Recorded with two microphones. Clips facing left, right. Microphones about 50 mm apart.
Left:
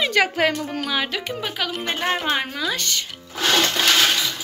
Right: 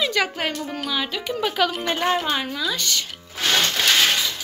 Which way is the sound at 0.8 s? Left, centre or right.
Left.